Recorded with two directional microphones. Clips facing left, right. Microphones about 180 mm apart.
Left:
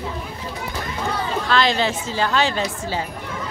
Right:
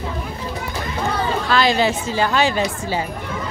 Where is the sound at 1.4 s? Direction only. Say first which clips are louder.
Right 2 dB; 10° right (ahead or behind).